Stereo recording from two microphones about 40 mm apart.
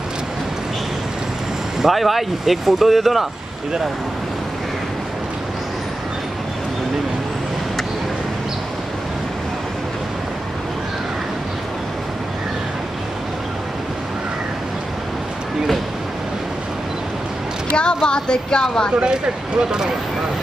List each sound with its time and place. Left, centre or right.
1.9 s speech: centre
17.7 s speech: left
19.0 s speech: centre